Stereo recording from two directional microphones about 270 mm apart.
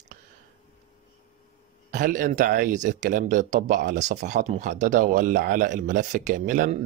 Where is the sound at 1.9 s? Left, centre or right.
Right.